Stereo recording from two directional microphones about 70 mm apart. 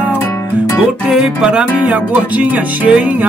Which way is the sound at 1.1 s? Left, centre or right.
Centre.